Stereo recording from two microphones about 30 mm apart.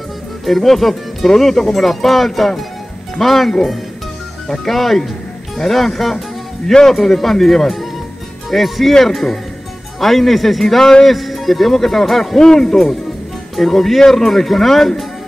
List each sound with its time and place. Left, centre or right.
0.5 s speech: centre
4.6 s speech: centre
10.8 s music: left
11.1 s speech: centre
12.4 s speech: centre